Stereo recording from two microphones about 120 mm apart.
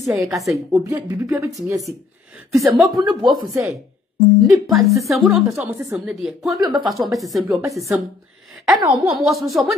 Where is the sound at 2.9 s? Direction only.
40° right (ahead or behind).